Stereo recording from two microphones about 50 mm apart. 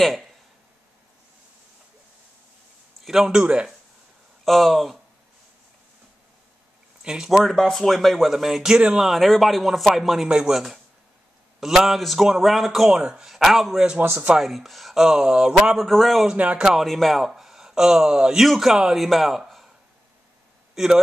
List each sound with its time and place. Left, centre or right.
0.0 s speech: centre
3.0 s a sound: centre
3.3 s speech: centre
4.5 s a man's voice: centre
7.0 s a sound: centre
7.2 s a man's voice: centre
8.7 s speech: right
9.0 s a man's voice: centre
15.8 s a man's voice: centre
20.7 s speech: centre